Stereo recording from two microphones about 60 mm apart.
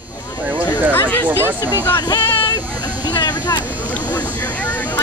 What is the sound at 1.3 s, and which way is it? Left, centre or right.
Speech, right.